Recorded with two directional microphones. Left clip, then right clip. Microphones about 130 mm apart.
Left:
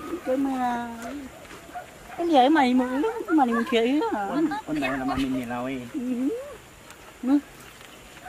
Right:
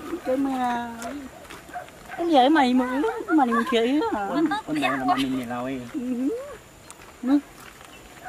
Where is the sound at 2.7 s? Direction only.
45° right (ahead or behind).